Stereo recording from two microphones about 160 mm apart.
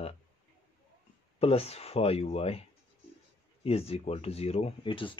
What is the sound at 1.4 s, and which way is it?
Speech, 40° left (ahead or behind).